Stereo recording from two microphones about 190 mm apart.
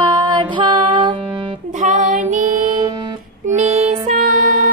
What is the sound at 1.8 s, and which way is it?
Music, 40° right (ahead or behind).